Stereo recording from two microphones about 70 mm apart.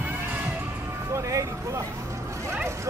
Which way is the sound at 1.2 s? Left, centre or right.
Right.